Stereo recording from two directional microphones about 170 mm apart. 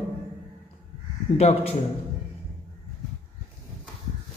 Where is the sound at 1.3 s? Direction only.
35° left (ahead or behind).